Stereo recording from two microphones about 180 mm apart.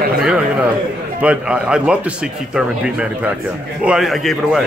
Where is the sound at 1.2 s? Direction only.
5° right (ahead or behind).